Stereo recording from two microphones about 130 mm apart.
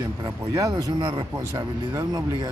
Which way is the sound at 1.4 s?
20° right (ahead or behind).